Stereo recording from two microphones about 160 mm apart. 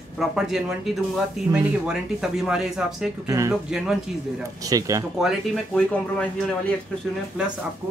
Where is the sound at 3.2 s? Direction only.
20° right (ahead or behind).